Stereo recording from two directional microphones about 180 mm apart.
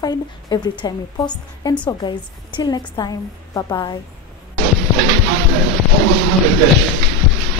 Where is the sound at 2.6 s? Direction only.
25° left (ahead or behind).